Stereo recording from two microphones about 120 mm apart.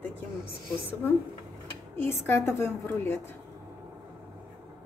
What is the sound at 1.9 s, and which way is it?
A woman's voice, 20° left (ahead or behind).